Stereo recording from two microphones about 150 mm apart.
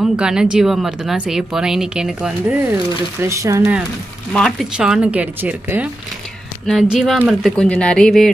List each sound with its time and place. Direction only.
0.0 s speech: 5° right (ahead or behind)
2.4 s speech: 15° right (ahead or behind)
4.3 s speech: 5° left (ahead or behind)
7.5 s speech: 5° left (ahead or behind)